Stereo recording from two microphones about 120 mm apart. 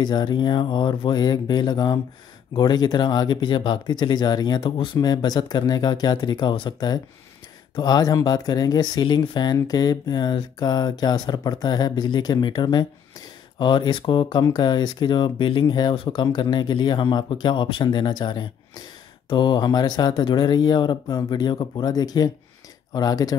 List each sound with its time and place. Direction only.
0.0 s speech: 40° left (ahead or behind)